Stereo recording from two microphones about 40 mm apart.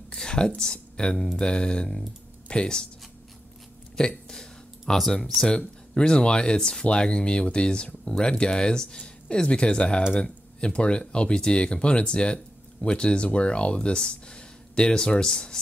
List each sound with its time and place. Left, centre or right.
0.1 s a sound: left
0.6 s speech: left
1.1 s speech: centre
1.4 s speech: left
4.3 s a sound: centre
5.5 s speech: left